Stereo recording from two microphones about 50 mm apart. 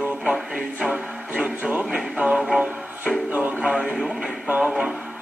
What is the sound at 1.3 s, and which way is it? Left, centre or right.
Music, right.